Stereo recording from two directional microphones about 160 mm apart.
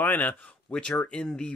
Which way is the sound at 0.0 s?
10° left (ahead or behind).